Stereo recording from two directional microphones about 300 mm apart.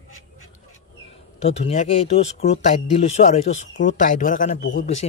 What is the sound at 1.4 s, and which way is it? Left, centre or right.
Speech, left.